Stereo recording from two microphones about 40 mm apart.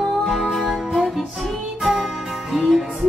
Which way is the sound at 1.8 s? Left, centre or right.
Centre.